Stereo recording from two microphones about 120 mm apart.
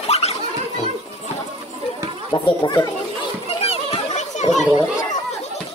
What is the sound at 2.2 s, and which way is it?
Speech, 40° left (ahead or behind).